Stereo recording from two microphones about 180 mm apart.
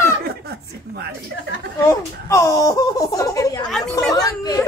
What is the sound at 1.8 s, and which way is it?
Speech, 20° left (ahead or behind).